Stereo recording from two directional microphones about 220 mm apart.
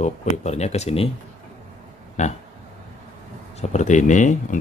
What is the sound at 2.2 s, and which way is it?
Speech, 35° left (ahead or behind).